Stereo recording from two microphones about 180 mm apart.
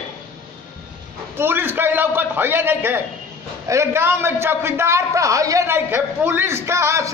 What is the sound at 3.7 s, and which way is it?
A man's voice, 15° right (ahead or behind).